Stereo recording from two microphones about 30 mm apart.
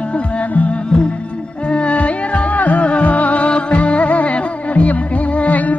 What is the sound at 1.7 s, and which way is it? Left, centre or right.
Music, left.